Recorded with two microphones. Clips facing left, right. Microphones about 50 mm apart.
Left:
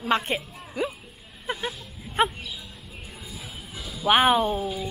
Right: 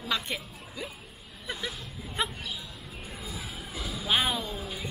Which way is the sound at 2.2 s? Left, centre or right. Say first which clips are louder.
Left 9 dB; left.